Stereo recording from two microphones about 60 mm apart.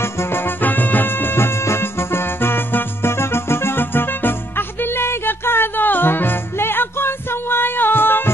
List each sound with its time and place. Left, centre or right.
0.0 s music: left